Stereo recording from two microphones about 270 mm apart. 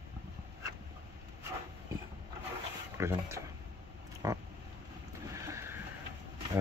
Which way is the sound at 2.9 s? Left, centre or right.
Centre.